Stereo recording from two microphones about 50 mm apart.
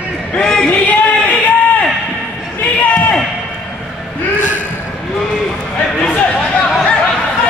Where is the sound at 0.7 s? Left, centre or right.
Left.